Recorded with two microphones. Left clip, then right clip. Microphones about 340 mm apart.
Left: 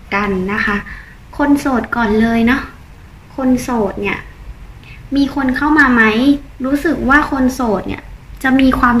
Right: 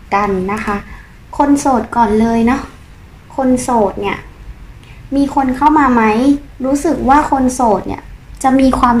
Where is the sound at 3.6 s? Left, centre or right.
Right.